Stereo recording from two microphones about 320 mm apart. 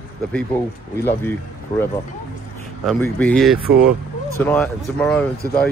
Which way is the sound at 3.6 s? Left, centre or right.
Right.